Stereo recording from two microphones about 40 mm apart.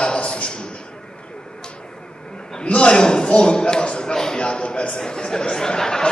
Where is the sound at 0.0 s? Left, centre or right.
Left.